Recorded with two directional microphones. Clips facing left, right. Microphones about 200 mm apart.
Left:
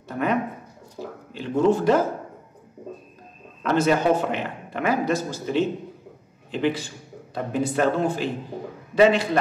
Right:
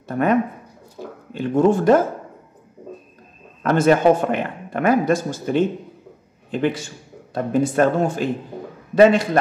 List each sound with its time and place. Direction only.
0.1 s speech: 50° right (ahead or behind)
3.6 s speech: 50° right (ahead or behind)